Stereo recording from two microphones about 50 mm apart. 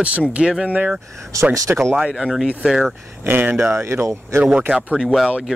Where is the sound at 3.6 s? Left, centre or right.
Right.